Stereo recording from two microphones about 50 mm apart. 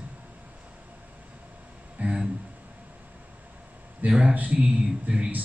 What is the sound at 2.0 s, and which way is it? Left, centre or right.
Speech, right.